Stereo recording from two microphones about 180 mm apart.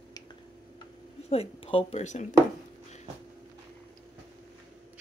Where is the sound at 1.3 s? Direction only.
30° left (ahead or behind).